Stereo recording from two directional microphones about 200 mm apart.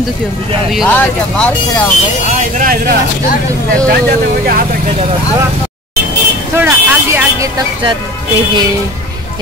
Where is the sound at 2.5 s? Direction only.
45° right (ahead or behind).